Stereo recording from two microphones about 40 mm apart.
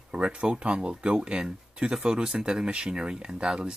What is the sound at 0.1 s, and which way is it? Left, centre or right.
Speech, right.